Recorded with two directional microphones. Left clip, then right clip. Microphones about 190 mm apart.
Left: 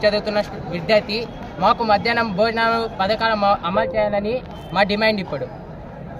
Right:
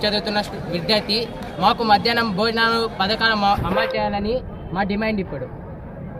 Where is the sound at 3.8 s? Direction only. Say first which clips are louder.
Left 2 dB; 30° left (ahead or behind).